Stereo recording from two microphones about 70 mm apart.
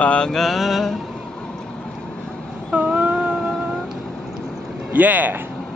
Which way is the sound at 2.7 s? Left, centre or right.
Centre.